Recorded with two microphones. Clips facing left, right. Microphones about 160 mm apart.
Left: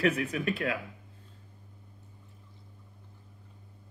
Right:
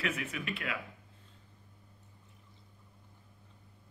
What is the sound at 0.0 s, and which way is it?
Speech, 40° left (ahead or behind).